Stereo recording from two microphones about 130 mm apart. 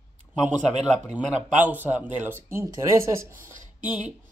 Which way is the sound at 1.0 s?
10° right (ahead or behind).